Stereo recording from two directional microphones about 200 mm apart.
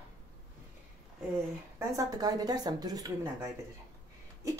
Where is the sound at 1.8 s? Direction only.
20° right (ahead or behind).